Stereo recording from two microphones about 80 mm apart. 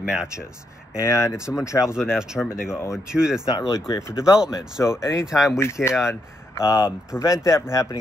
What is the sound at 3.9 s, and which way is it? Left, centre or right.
Speech, left.